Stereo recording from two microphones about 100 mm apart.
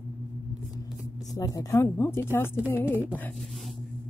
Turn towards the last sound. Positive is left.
turn(degrees=-20)  # may be behind; listen again after turning